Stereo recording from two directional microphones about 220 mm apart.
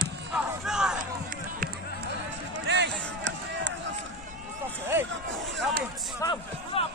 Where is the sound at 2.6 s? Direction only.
50° right (ahead or behind).